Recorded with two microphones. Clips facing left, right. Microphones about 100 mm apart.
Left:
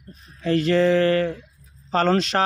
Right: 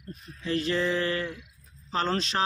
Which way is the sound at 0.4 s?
65° left (ahead or behind).